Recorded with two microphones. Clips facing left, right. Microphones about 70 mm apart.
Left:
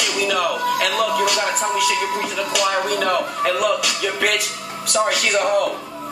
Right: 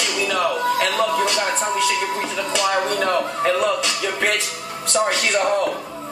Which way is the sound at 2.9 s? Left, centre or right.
Centre.